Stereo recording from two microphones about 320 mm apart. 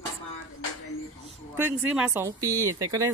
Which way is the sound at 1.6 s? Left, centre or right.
Centre.